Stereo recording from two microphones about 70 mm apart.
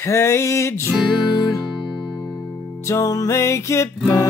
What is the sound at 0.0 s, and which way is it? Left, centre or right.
Music, left.